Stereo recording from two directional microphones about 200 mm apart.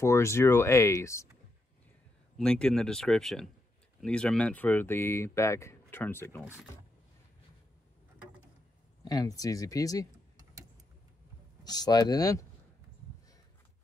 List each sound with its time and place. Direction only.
0.0 s speech: 15° left (ahead or behind)
2.3 s speech: 5° left (ahead or behind)
9.0 s speech: 20° left (ahead or behind)
11.6 s speech: 20° left (ahead or behind)